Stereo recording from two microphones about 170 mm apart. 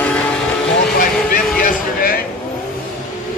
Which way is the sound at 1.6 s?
55° left (ahead or behind).